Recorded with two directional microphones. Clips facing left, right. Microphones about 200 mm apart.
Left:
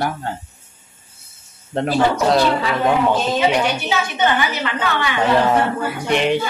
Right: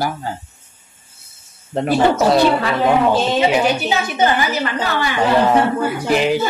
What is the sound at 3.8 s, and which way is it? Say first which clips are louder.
A woman's voice: right 2 dB; 40° right (ahead or behind).